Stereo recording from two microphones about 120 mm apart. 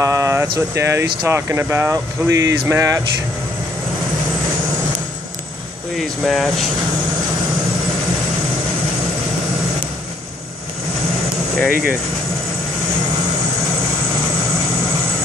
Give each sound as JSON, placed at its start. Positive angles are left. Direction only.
{"t": 0.0, "sound": "speech", "side_deg": -25}
{"t": 5.9, "sound": "speech", "side_deg": 0}
{"t": 11.5, "sound": "speech", "side_deg": 0}